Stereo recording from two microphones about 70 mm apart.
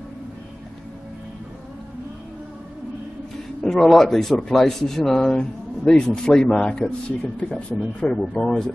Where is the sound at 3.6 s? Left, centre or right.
Centre.